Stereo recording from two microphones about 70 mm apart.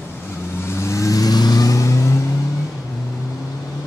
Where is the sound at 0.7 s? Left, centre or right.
Left.